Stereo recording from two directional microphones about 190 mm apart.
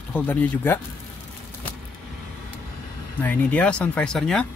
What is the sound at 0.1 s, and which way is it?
Speech, 10° left (ahead or behind).